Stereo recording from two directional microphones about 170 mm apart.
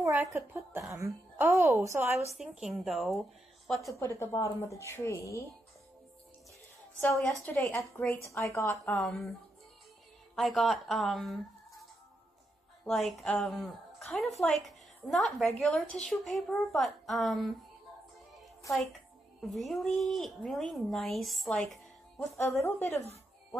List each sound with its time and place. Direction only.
0.0 s speech: 15° right (ahead or behind)
2.3 s speech: centre (ahead or behind)
4.0 s a woman's voice: 15° left (ahead or behind)
7.0 s a woman's voice: 10° left (ahead or behind)
8.9 s speech: centre (ahead or behind)
10.3 s speech: centre (ahead or behind)
12.8 s a woman's voice: centre (ahead or behind)
19.4 s speech: centre (ahead or behind)
22.4 s a woman's voice: 15° left (ahead or behind)